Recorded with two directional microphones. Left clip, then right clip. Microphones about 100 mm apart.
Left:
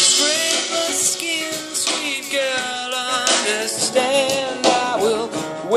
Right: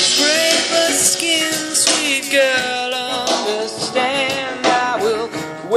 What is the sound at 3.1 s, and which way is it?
Music, 90° left.